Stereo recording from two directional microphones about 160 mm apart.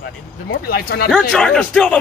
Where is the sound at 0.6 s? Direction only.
70° left (ahead or behind).